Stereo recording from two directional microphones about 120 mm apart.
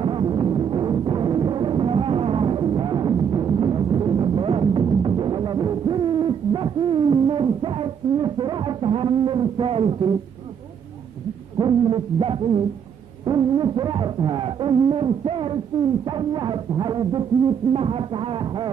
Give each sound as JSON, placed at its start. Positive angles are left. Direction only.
{"t": 0.0, "sound": "music", "side_deg": -40}
{"t": 4.7, "sound": "music", "side_deg": -40}
{"t": 11.5, "sound": "music", "side_deg": -40}
{"t": 17.7, "sound": "music", "side_deg": -50}